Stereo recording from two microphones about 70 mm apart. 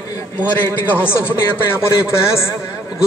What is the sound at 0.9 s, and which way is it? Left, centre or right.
A man's voice, left.